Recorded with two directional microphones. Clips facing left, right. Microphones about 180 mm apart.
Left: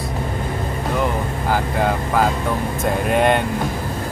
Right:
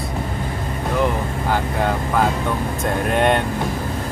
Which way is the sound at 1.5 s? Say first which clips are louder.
Left 1 dB; centre (ahead or behind).